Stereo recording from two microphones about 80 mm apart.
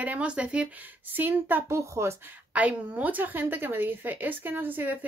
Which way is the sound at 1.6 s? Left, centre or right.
Right.